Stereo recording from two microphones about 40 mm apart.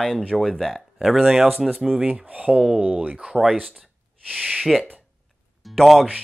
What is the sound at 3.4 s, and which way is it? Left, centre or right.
Speech, centre.